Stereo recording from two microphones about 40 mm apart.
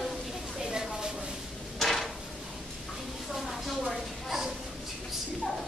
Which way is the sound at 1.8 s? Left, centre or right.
Centre.